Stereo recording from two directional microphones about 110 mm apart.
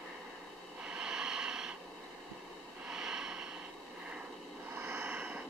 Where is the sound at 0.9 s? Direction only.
5° right (ahead or behind).